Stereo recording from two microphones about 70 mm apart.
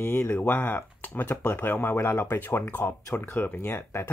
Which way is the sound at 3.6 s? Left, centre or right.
Left.